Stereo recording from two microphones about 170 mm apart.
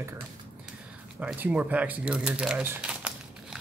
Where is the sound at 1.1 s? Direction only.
10° right (ahead or behind).